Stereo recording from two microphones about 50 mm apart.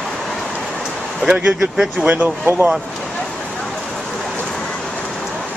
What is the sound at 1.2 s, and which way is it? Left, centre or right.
Speech, right.